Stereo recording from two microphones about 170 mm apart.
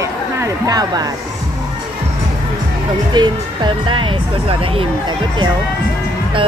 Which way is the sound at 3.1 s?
25° right (ahead or behind).